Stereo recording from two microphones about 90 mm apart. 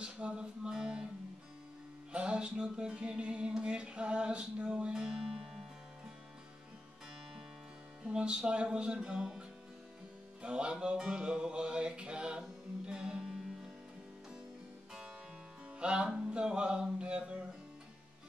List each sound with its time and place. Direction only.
0.0 s music: 10° right (ahead or behind)
2.1 s music: 10° right (ahead or behind)
8.0 s music: 10° right (ahead or behind)
10.4 s music: 10° right (ahead or behind)
15.8 s music: 10° right (ahead or behind)